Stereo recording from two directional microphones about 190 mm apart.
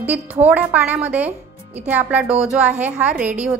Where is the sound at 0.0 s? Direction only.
10° right (ahead or behind).